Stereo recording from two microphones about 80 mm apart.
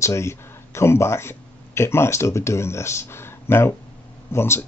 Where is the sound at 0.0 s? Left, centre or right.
Left.